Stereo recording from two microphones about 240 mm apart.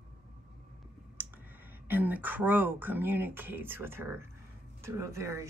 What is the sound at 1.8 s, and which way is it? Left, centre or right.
Speech, centre.